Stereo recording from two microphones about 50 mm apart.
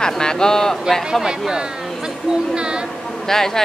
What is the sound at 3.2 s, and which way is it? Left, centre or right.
Speech, centre.